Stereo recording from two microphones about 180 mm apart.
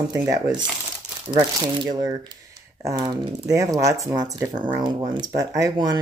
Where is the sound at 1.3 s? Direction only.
25° right (ahead or behind).